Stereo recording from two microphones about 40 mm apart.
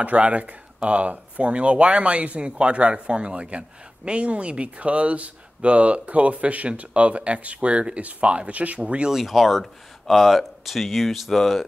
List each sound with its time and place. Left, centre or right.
0.0 s speech: right
9.1 s speech: centre